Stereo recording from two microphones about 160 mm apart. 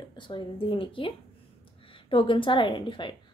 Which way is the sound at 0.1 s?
30° left (ahead or behind).